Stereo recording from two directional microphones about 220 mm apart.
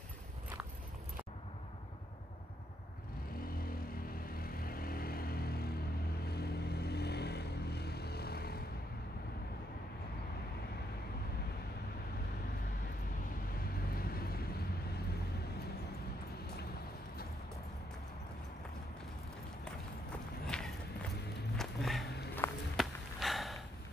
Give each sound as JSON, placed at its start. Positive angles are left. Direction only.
{"t": 4.4, "sound": "vehicle", "side_deg": 40}
{"t": 13.9, "sound": "vehicle", "side_deg": 45}
{"t": 20.4, "sound": "a sound", "side_deg": 0}
{"t": 22.3, "sound": "walk", "side_deg": 10}
{"t": 23.1, "sound": "gasp", "side_deg": 0}